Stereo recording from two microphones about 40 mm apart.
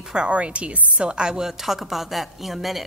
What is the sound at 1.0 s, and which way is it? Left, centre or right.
A woman's voice, right.